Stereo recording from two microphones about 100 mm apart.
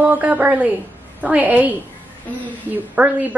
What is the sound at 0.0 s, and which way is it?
A woman's voice, 15° right (ahead or behind).